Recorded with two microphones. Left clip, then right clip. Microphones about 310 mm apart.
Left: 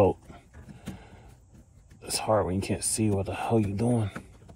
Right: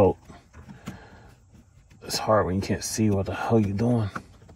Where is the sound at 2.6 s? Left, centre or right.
Right.